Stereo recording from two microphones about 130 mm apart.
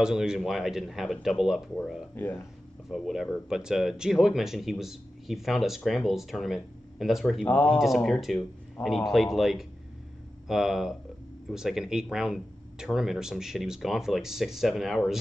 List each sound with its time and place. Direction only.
0.0 s speech: 5° right (ahead or behind)
2.1 s speech: 15° left (ahead or behind)
2.9 s speech: centre (ahead or behind)
7.4 s speech: 10° left (ahead or behind)
7.8 s speech: centre (ahead or behind)